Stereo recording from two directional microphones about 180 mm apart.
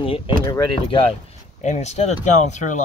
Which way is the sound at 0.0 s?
25° left (ahead or behind).